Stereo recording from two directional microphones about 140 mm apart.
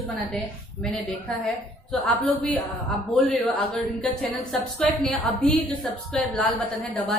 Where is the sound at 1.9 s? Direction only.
5° left (ahead or behind).